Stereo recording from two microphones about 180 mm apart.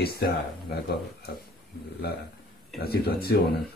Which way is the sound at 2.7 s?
60° left (ahead or behind).